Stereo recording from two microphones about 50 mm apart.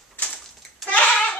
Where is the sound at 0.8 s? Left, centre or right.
Left.